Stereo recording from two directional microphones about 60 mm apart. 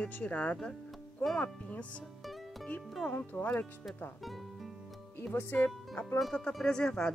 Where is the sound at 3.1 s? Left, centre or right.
Left.